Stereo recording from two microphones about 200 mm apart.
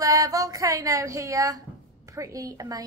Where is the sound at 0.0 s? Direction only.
15° right (ahead or behind).